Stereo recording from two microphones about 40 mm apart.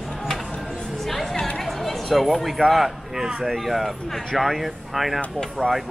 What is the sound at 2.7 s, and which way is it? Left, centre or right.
Speech, centre.